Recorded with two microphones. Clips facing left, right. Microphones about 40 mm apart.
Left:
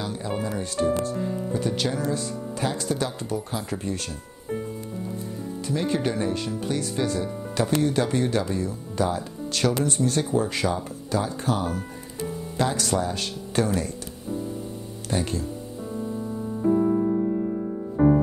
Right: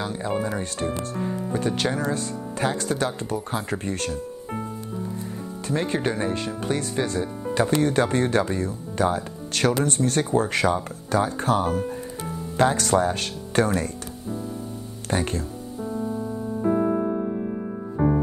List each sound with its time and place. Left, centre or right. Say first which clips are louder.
0.0 s speech: right 3 dB; right
5.7 s speech: right 1 dB; right
7.8 s speech: right 2 dB; right
15.0 s speech: right 2 dB; right
16.7 s music: left 2 dB; right
17.9 s music: left 3 dB; centre